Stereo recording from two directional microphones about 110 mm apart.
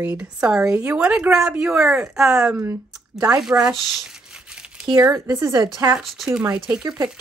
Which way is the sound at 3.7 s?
Centre (ahead or behind).